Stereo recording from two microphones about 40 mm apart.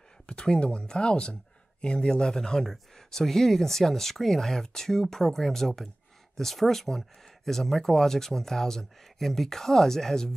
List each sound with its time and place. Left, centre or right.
0.3 s speech: left